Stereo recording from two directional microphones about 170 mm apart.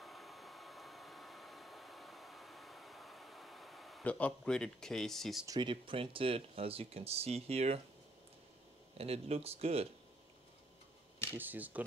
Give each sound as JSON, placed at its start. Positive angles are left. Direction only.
{"t": 0.0, "sound": "a sound", "side_deg": 0}
{"t": 5.5, "sound": "speech", "side_deg": -30}
{"t": 8.9, "sound": "speech", "side_deg": -35}
{"t": 11.3, "sound": "speech", "side_deg": -10}